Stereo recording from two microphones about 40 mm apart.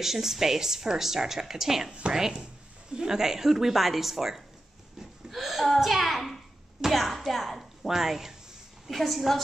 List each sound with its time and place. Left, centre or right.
0.0 s a woman's voice: centre
1.9 s a woman's voice: right
2.1 s a woman's voice: centre